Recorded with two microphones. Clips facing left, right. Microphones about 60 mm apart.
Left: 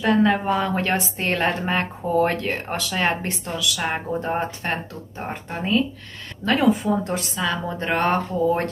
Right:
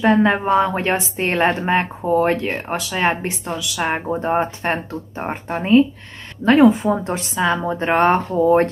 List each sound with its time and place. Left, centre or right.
0.0 s speech: right